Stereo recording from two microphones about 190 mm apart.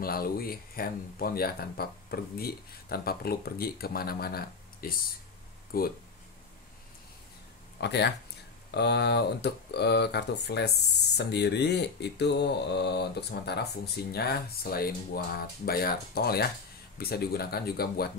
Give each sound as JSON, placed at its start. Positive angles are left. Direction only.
{"t": 0.0, "sound": "speech", "side_deg": 50}
{"t": 7.8, "sound": "speech", "side_deg": 65}